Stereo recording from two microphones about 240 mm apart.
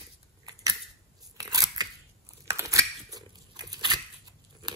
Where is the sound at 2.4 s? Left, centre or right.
Centre.